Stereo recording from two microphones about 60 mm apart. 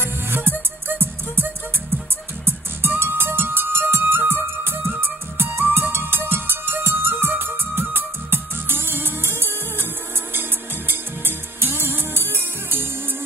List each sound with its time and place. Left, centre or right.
0.0 s music: right
11.6 s music: right